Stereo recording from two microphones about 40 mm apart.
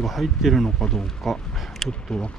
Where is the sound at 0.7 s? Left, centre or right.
Centre.